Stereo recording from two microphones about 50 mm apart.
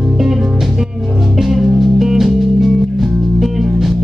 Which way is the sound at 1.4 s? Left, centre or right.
Centre.